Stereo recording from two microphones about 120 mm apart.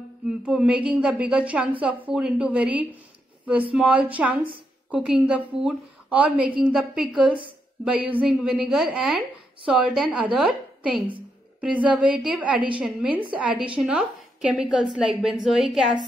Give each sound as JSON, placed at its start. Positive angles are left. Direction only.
{"t": 0.3, "sound": "a woman's voice", "side_deg": -10}